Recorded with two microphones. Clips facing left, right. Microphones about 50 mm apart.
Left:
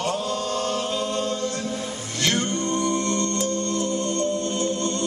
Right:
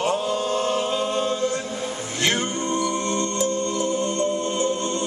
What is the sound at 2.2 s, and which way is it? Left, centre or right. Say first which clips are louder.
Music: even; centre.